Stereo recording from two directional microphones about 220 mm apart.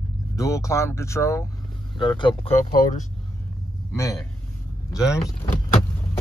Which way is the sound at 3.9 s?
15° left (ahead or behind).